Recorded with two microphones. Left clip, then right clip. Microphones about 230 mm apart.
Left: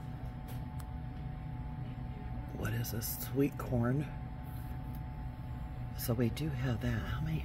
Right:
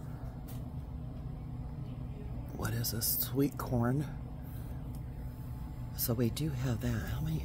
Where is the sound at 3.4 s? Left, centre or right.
Centre.